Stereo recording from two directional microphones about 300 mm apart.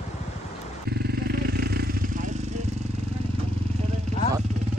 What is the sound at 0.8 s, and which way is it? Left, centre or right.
Vehicle, right.